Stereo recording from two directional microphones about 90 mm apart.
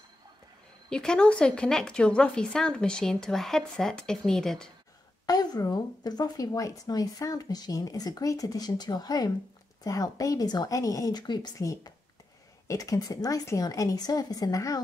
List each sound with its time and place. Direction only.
0.8 s speech: 10° left (ahead or behind)
5.2 s a woman's voice: 45° left (ahead or behind)
11.5 s a woman's voice: 40° left (ahead or behind)